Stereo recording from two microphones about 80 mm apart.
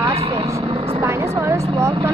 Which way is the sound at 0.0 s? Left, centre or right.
Right.